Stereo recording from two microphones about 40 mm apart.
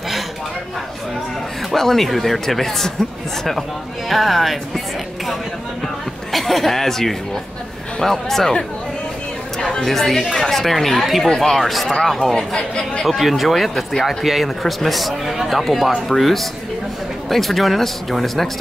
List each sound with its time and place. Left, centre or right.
1.7 s speech: centre
4.1 s music: centre
6.3 s speech: centre
9.6 s chatter: centre
9.8 s speech: centre
12.4 s speech: centre
13.0 s speech: centre